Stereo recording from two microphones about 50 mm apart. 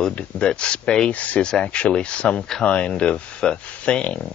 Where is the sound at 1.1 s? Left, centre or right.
Left.